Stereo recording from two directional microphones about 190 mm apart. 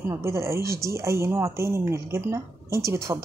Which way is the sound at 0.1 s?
15° right (ahead or behind).